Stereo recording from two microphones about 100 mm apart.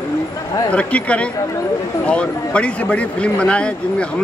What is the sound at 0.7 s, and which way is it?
Speech, 15° left (ahead or behind).